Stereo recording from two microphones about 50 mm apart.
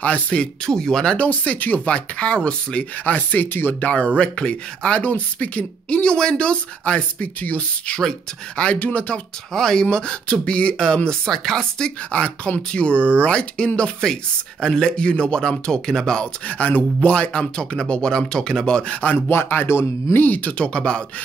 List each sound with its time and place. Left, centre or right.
0.0 s speech: left
0.7 s speech: centre
1.1 s speech: left
3.2 s speech: left
3.8 s speech: left
8.0 s speech: centre
8.7 s speech: left
9.5 s speech: centre
12.1 s speech: left
12.9 s speech: right
13.2 s speech: left
16.4 s speech: left
19.1 s speech: left
20.5 s speech: left